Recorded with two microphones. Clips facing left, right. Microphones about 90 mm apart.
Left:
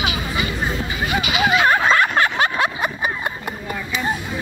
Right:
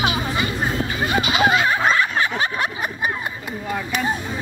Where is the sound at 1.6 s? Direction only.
60° left (ahead or behind); by 3.1 s 90° left.